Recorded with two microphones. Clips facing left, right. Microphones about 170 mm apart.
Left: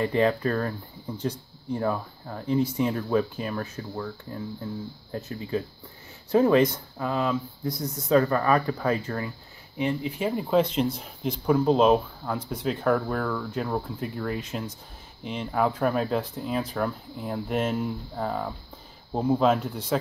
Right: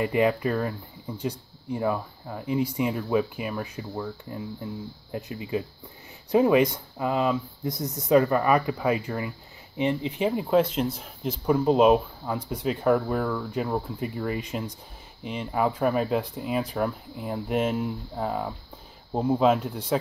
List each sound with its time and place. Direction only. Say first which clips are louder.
0.0 s speech: even; 10° right (ahead or behind)
9.8 s speech: right 2 dB; 20° right (ahead or behind)
10.3 s speech: left 1 dB; 5° right (ahead or behind)